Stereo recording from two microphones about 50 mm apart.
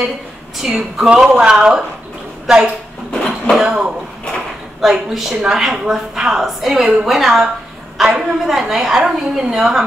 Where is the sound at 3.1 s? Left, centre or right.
Centre.